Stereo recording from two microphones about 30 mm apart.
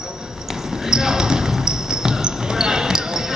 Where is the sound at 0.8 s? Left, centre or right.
Right.